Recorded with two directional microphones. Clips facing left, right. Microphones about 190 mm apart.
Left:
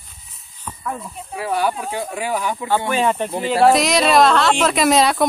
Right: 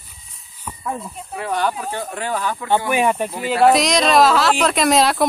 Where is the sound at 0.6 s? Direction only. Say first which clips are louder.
Right 1 dB; 15° right (ahead or behind).